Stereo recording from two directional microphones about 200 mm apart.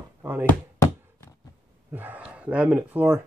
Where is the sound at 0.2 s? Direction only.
10° right (ahead or behind).